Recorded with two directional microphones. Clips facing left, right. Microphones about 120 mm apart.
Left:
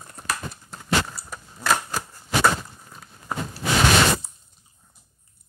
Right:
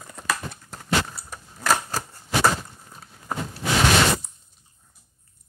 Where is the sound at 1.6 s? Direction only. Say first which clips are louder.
Even; 35° right (ahead or behind).